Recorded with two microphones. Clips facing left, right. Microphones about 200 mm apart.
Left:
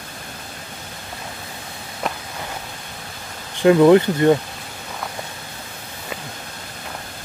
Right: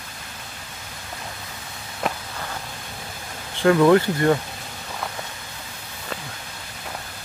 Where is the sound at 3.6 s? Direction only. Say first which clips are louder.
Left 4 dB; 20° left (ahead or behind).